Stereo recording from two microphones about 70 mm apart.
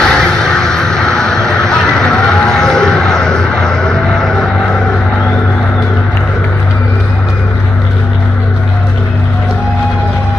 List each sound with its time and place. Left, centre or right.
0.0 s music: centre